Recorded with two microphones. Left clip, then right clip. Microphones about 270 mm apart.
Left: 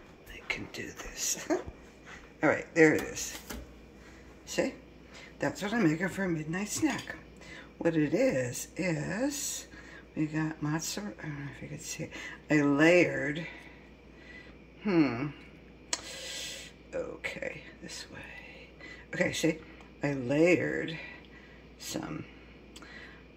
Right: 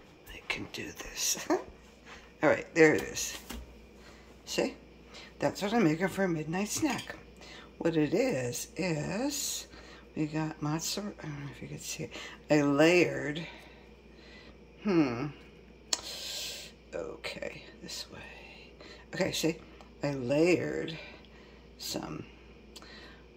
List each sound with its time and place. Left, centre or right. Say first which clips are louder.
0.3 s speech: even; centre
4.5 s a woman's voice: even; centre
14.9 s speech: left 1 dB; centre
15.9 s a sound: right 2 dB; centre
19.1 s speech: left 2 dB; centre